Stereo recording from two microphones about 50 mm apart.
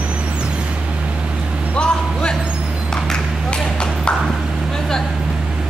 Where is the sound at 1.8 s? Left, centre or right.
Centre.